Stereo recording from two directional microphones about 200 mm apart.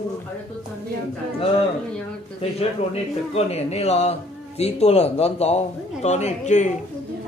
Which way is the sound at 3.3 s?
30° left (ahead or behind).